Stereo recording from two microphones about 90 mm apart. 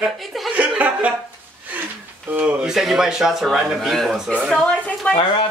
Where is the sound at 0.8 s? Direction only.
15° right (ahead or behind).